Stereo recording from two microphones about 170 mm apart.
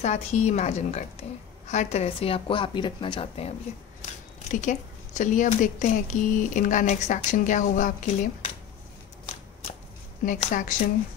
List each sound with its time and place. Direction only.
0.0 s a woman's voice: 40° left (ahead or behind)
4.5 s speech: 45° left (ahead or behind)
10.2 s speech: 50° left (ahead or behind)